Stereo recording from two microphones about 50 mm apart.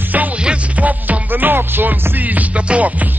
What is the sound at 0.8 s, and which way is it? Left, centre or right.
Music, right.